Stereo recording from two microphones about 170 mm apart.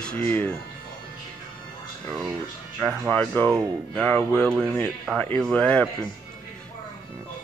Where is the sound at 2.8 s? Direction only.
5° left (ahead or behind).